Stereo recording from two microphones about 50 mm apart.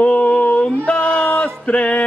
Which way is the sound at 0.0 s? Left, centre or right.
Left.